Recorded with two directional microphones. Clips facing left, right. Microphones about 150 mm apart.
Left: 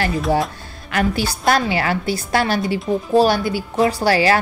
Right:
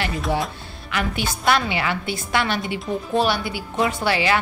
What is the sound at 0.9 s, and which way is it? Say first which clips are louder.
Speech: left 5 dB; 40° left (ahead or behind).